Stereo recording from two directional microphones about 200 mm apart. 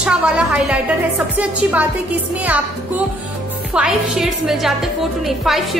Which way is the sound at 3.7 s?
5° right (ahead or behind).